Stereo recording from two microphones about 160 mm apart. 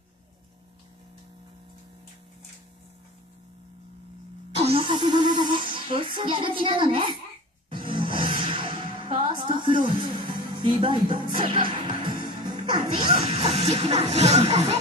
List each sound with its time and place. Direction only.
4.6 s music: 35° right (ahead or behind)
7.7 s roar: 30° right (ahead or behind)
11.3 s music: 30° right (ahead or behind)